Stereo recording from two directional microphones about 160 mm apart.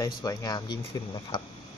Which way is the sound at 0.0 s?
25° left (ahead or behind).